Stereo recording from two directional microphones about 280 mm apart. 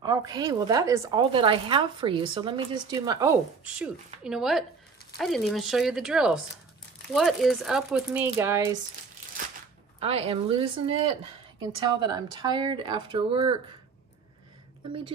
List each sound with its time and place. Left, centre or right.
0.0 s a woman's voice: centre
9.9 s a woman's voice: right